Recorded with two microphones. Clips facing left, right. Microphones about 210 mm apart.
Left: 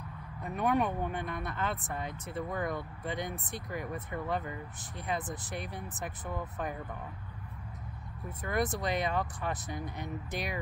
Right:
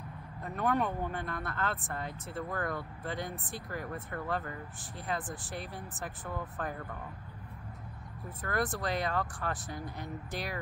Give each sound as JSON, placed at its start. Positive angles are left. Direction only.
{"t": 0.4, "sound": "speech", "side_deg": 20}
{"t": 8.4, "sound": "speech", "side_deg": 20}